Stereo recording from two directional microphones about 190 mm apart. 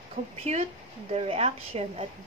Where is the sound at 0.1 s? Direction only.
35° right (ahead or behind).